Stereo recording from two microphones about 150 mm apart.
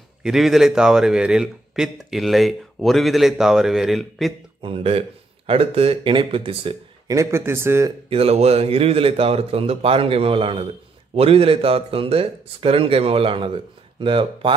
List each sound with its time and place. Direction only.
0.2 s a man's voice: centre (ahead or behind)
4.6 s a man's voice: 40° right (ahead or behind)
7.1 s speech: 20° right (ahead or behind)
8.1 s a man's voice: 40° right (ahead or behind)